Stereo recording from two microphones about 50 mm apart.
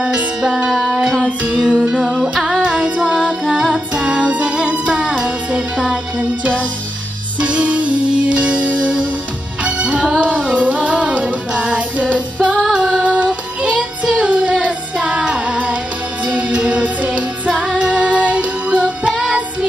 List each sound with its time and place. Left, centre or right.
0.0 s music: centre
0.7 s music: centre
1.6 s music: centre
2.6 s female singing: centre
3.2 s music: centre
3.7 s music: centre
7.3 s music: right
12.7 s female singing: centre
13.3 s music: right
14.1 s child singing: right
16.3 s music: right